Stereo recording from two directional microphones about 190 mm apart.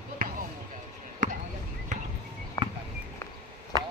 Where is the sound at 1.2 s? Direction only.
40° right (ahead or behind).